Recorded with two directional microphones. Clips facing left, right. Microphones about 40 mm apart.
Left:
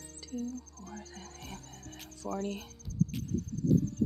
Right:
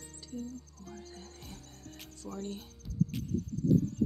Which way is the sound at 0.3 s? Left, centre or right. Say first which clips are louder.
Left 4 dB; left.